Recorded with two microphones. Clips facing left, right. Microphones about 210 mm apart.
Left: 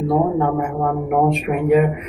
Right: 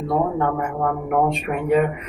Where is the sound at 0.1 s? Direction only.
10° left (ahead or behind).